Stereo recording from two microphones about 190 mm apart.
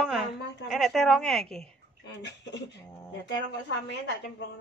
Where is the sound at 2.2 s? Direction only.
65° left (ahead or behind).